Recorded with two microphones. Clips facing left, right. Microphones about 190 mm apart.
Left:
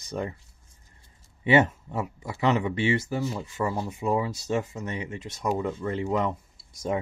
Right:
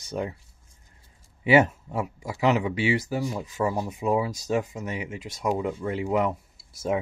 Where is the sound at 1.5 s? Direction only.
10° right (ahead or behind).